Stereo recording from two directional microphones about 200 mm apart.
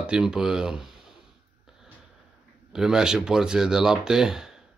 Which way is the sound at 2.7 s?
5° right (ahead or behind).